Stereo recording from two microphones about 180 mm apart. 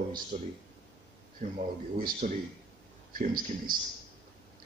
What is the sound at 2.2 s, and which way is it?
Speech, 45° right (ahead or behind).